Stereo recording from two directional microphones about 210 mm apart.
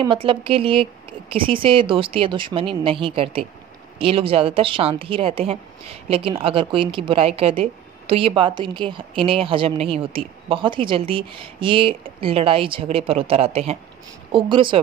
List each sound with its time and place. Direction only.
0.0 s a woman's voice: 25° right (ahead or behind)